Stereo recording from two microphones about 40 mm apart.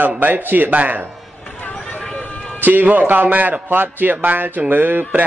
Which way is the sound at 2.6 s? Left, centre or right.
Right.